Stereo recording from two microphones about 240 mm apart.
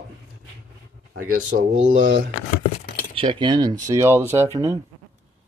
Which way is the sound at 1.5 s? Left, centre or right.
Right.